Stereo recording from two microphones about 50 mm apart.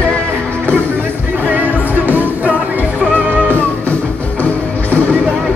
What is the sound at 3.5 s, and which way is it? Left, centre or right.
Music, left.